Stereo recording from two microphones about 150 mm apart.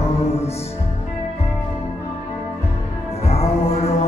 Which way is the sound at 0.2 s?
45° left (ahead or behind).